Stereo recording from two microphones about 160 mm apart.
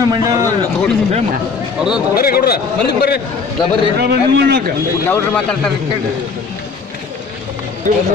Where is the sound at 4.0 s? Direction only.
85° right.